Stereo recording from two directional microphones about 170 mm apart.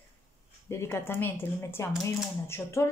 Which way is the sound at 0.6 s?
15° left (ahead or behind).